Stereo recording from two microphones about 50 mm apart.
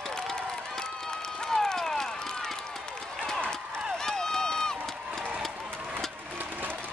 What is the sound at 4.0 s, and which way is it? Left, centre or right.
Run, centre.